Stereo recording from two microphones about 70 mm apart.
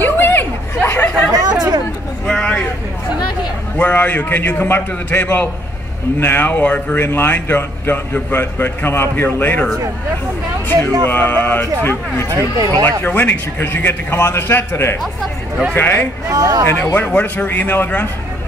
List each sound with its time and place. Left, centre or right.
0.0 s a sound: left
1.4 s a sound: right
2.2 s a sound: centre
3.7 s speech: left
11.1 s a man's voice: left
12.3 s speech: right
12.8 s a man's voice: left
16.3 s speech: right
16.7 s speech: left